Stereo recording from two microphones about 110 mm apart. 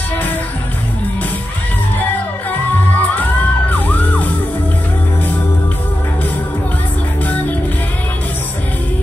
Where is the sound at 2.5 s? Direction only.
15° left (ahead or behind).